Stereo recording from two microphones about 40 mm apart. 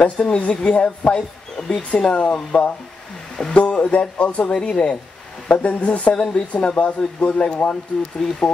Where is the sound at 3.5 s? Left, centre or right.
Left.